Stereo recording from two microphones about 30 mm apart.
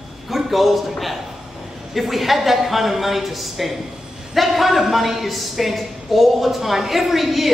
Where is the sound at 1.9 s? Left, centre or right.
Centre.